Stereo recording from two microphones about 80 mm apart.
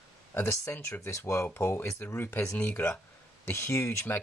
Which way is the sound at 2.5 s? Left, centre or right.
Left.